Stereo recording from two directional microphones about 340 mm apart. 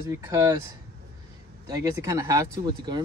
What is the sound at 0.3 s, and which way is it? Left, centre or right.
Speech, centre.